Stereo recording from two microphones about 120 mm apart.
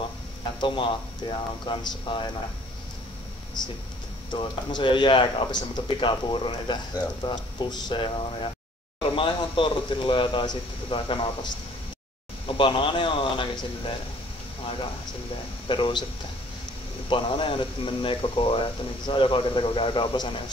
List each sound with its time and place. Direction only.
0.6 s speech: 45° left (ahead or behind)
4.3 s speech: 40° left (ahead or behind)
9.1 s speech: 45° left (ahead or behind)
15.7 s speech: 40° left (ahead or behind)
17.1 s speech: 45° left (ahead or behind)